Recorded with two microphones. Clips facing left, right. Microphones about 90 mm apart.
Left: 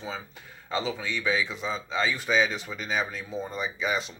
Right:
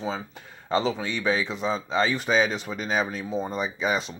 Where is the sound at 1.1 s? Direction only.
25° right (ahead or behind).